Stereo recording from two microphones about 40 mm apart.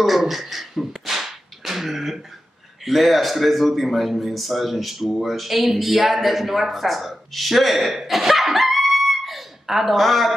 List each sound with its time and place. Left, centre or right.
0.0 s a man's voice: centre